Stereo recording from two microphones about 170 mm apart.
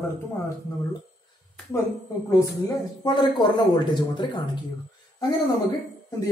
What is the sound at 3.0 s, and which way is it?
Speech, 25° left (ahead or behind).